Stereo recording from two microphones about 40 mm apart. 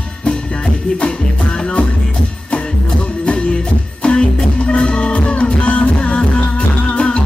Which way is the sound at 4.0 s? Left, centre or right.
Left.